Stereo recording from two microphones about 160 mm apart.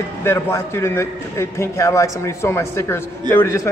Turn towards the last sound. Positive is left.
turn(degrees=20)  # may be behind; listen again after turning